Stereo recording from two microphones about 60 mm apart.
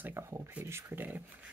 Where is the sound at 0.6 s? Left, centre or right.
Right.